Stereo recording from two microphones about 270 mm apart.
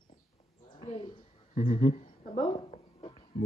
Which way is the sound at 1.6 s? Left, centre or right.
Left.